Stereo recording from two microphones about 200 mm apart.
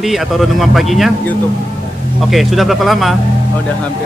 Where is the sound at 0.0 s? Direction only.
Centre (ahead or behind).